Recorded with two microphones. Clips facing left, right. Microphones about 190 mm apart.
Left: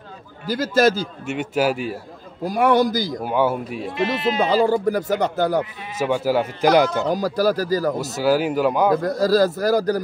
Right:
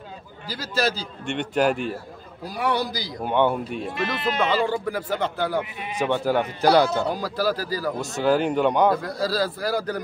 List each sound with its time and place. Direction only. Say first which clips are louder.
0.5 s speech: left 8 dB; 50° left (ahead or behind)
1.2 s speech: even; 5° left (ahead or behind)
2.4 s speech: left 8 dB; 50° left (ahead or behind)
3.2 s speech: right 2 dB; 5° left (ahead or behind)
3.9 s speech: left 6 dB; 25° left (ahead or behind)
4.5 s speech: left 6 dB; 40° left (ahead or behind)
5.9 s speech: left 2 dB; 10° left (ahead or behind)
7.1 s speech: left 5 dB; 40° left (ahead or behind)
8.0 s speech: left 2 dB; 5° left (ahead or behind)
9.0 s speech: left 8 dB; 45° left (ahead or behind)